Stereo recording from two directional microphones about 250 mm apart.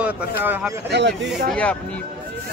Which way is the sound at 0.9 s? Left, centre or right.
Right.